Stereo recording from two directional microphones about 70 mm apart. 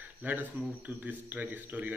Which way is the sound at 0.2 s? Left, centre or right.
Right.